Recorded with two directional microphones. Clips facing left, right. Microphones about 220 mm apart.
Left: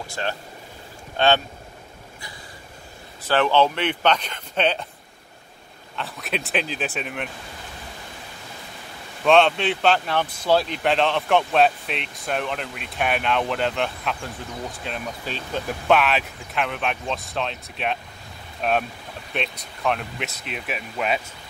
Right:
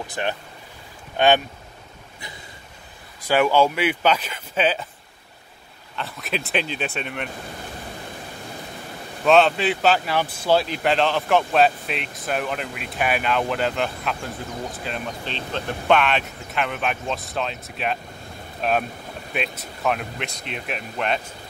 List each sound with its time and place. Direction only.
0.1 s speech: 15° right (ahead or behind)
3.2 s speech: 10° right (ahead or behind)
5.9 s speech: centre (ahead or behind)
9.2 s speech: centre (ahead or behind)